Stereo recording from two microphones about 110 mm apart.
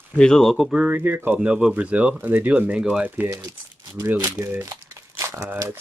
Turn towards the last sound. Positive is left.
turn(degrees=-15)  # may be behind; listen again after turning